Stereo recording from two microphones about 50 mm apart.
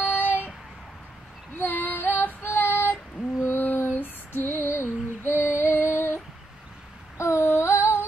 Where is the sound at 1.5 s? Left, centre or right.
Left.